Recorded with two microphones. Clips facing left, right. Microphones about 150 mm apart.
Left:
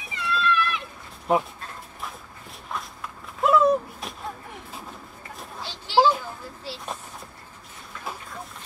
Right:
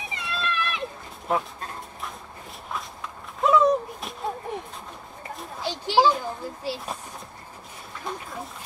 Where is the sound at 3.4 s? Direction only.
Centre (ahead or behind).